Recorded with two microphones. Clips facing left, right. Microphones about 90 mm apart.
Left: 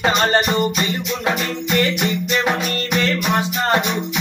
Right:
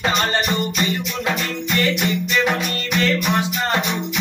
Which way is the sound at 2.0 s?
25° left (ahead or behind).